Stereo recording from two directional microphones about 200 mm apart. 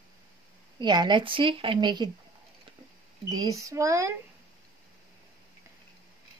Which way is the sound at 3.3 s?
20° right (ahead or behind).